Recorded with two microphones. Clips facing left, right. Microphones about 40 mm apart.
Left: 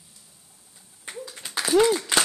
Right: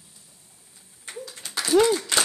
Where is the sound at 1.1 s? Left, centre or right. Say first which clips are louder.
Left 1 dB; centre.